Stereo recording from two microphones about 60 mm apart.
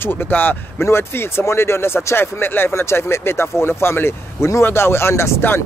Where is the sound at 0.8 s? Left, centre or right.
Left.